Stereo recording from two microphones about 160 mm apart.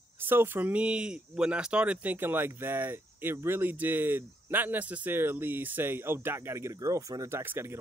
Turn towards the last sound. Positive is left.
turn(degrees=-15)  # may be behind; listen again after turning